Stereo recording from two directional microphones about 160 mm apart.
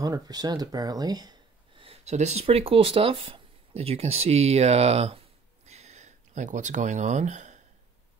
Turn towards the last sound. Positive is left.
turn(degrees=-50)  # may be behind; listen again after turning